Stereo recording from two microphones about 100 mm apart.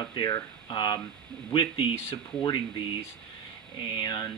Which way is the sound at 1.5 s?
60° left (ahead or behind).